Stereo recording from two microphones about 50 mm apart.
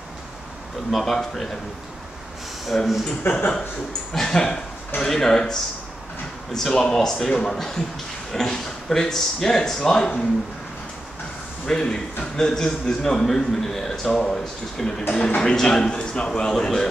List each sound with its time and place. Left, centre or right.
0.9 s speech: centre
2.6 s speech: centre
3.3 s speech: left
4.1 s speech: centre
6.8 s speech: centre
11.6 s speech: centre
15.1 s a man's voice: left
15.4 s speech: centre